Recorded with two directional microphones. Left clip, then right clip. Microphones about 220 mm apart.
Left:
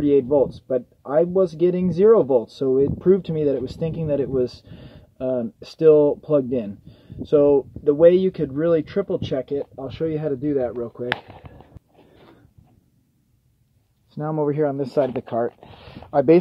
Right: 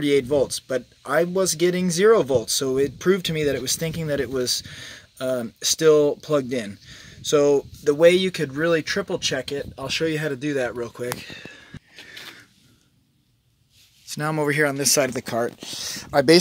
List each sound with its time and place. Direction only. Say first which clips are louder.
0.0 s speech: left 2 dB; 20° right (ahead or behind)
2.2 s speech: left 2 dB; 45° right (ahead or behind)
2.7 s speech: left 5 dB; 20° right (ahead or behind)
14.2 s speech: even; 25° right (ahead or behind)